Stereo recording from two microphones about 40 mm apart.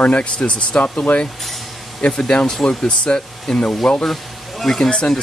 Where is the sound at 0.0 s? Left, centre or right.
Left.